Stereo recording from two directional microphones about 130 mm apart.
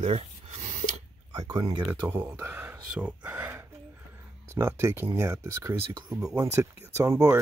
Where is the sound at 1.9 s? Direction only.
15° right (ahead or behind).